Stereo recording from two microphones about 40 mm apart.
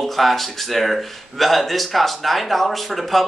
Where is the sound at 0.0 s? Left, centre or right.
Centre.